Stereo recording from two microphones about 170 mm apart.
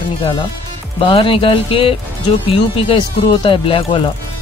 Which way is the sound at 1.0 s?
30° left (ahead or behind).